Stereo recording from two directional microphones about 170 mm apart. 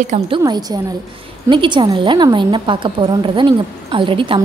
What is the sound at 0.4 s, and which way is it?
A woman's voice, 20° right (ahead or behind).